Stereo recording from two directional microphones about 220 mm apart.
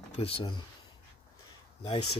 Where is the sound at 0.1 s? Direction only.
25° left (ahead or behind).